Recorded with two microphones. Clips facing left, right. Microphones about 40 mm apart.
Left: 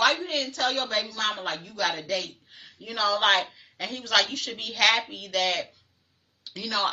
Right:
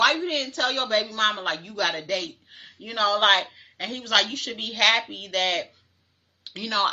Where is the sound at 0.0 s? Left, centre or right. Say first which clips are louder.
Right 2 dB; right.